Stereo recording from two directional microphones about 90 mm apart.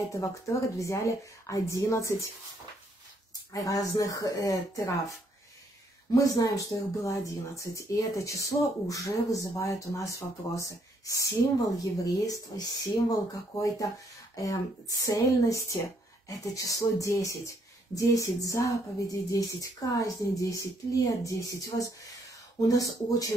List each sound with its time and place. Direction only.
0.1 s speech: 35° left (ahead or behind)
3.5 s speech: 40° left (ahead or behind)
6.1 s speech: 40° left (ahead or behind)